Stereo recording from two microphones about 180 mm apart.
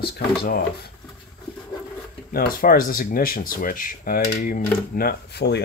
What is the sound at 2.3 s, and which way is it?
Speech, 55° left (ahead or behind).